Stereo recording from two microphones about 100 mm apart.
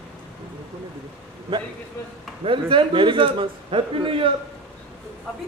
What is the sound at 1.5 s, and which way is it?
A man's voice, 50° right (ahead or behind).